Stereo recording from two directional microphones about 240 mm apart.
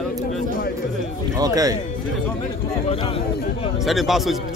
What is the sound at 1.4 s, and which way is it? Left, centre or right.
Speech, centre.